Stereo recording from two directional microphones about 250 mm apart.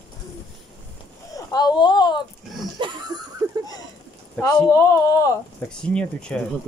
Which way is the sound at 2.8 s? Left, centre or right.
Centre.